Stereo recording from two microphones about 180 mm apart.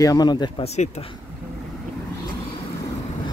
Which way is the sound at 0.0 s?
20° left (ahead or behind).